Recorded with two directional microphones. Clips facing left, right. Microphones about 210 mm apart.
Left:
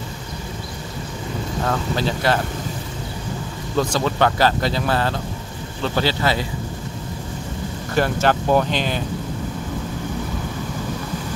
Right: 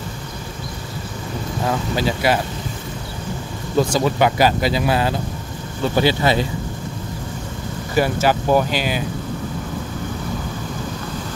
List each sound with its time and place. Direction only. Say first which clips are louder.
1.7 s speech: right 2 dB; 10° right (ahead or behind)
3.7 s speech: right 3 dB; 10° right (ahead or behind)
7.9 s speech: right 1 dB; 5° right (ahead or behind)